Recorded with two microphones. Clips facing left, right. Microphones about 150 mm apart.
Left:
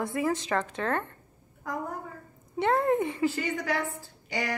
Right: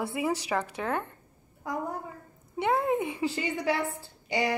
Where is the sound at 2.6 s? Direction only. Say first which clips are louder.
Left 2 dB; 5° right (ahead or behind).